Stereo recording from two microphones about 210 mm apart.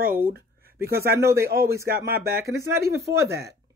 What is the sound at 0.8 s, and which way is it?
Speech, 45° right (ahead or behind).